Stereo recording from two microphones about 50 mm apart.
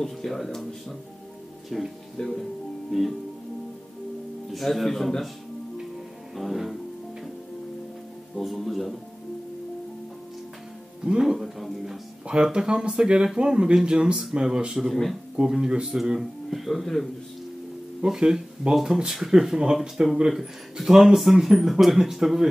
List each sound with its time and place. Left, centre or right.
0.0 s speech: centre
4.5 s speech: centre
6.3 s speech: centre
8.4 s speech: centre
11.1 s speech: centre
12.5 s speech: centre
16.2 s speech: centre
18.0 s speech: centre